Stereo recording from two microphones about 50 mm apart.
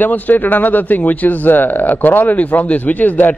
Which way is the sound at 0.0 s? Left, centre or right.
Left.